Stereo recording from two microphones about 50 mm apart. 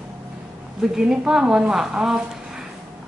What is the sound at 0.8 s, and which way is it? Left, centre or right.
A woman's voice, centre.